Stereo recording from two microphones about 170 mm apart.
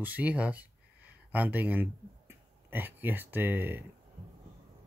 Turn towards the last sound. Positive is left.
turn(degrees=-10)  # may be behind; listen again after turning